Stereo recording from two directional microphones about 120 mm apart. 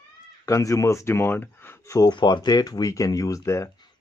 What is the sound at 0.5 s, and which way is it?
Speech, 25° left (ahead or behind).